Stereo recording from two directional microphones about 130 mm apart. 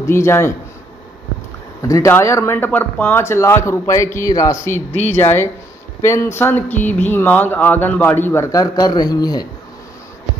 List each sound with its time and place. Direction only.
0.0 s speech: 20° left (ahead or behind)
1.8 s speech: 25° left (ahead or behind)
4.9 s speech: 60° left (ahead or behind)
5.2 s speech: 20° left (ahead or behind)